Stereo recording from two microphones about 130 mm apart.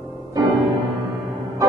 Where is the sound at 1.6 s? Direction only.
25° right (ahead or behind).